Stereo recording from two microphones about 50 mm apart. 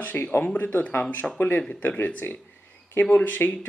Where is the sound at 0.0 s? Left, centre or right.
Left.